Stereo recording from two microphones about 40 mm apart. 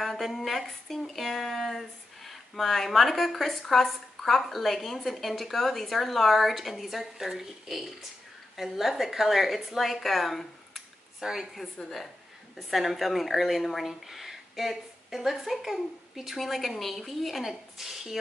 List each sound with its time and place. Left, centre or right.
0.0 s a woman's voice: centre
11.8 s a woman's voice: left
12.5 s a woman's voice: centre